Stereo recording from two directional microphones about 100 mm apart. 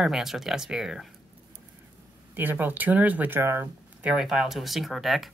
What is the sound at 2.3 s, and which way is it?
Speech, 20° right (ahead or behind).